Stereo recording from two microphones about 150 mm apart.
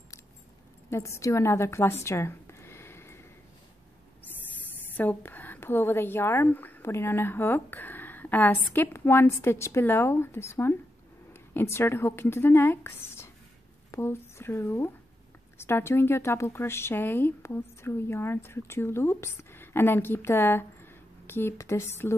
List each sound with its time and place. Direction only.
0.8 s a woman's voice: 20° left (ahead or behind)
4.8 s a woman's voice: 10° left (ahead or behind)